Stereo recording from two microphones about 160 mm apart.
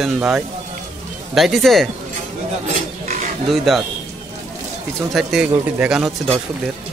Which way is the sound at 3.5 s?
Centre (ahead or behind).